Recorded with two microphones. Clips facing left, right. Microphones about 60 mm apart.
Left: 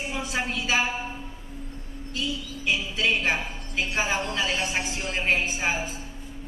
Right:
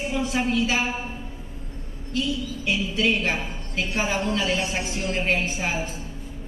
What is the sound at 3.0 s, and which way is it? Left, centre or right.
A woman's voice, centre.